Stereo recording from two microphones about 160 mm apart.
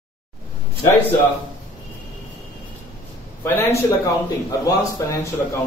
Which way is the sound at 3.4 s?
15° left (ahead or behind).